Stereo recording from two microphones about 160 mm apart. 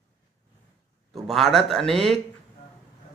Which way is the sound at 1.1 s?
Centre (ahead or behind).